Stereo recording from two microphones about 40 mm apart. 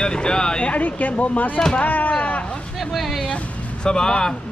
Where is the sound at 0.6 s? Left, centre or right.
Left.